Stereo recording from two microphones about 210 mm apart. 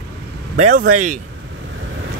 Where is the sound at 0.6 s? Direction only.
35° right (ahead or behind).